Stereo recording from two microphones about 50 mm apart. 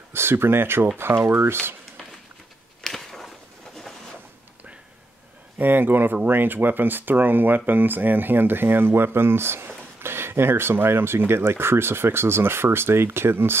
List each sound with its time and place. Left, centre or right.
0.1 s speech: right
2.8 s a sound: centre
5.6 s speech: right